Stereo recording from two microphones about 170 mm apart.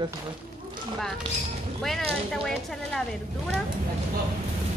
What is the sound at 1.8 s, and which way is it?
A woman's voice, centre (ahead or behind).